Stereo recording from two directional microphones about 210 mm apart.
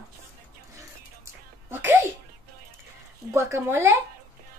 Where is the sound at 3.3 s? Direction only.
10° right (ahead or behind).